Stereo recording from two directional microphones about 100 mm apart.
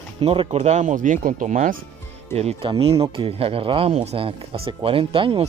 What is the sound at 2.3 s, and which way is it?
Speech, 90° right.